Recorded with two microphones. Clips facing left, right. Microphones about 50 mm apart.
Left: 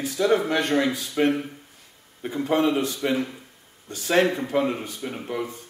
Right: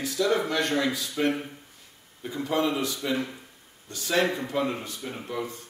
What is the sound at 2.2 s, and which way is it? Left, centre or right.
Speech, left.